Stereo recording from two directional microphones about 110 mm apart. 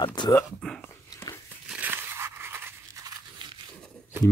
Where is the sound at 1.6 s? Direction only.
15° right (ahead or behind).